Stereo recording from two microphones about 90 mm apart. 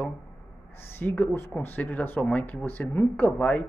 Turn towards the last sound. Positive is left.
turn(degrees=15)  # may be behind; listen again after turning